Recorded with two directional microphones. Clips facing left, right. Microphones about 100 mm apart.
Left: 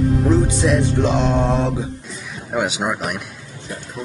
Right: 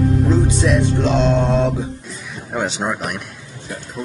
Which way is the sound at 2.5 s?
5° left (ahead or behind).